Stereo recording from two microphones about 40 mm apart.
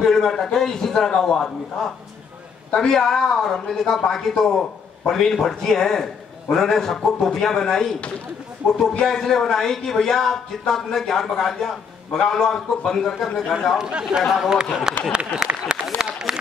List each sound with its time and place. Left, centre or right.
0.0 s a man's voice: centre
13.7 s speech: right
16.0 s a sound: centre